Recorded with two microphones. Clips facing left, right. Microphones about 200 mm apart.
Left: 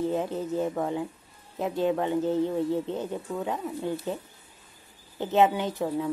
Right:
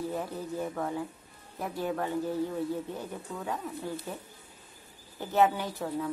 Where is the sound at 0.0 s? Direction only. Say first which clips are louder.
Left 6 dB; 25° left (ahead or behind).